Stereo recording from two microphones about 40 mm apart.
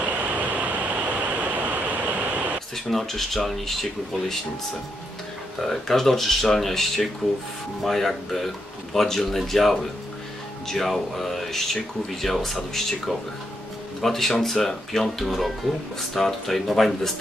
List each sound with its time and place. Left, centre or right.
0.0 s a sound: right
2.7 s speech: centre
5.6 s speech: centre
14.0 s speech: centre